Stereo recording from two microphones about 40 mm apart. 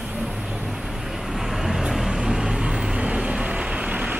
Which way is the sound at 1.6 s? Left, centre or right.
Centre.